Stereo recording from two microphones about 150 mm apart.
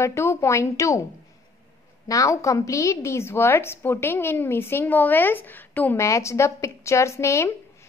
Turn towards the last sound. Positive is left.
turn(degrees=20)  # may be behind; listen again after turning